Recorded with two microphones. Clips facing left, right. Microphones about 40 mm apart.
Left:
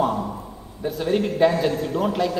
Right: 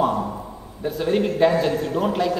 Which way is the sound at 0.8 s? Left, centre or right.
Centre.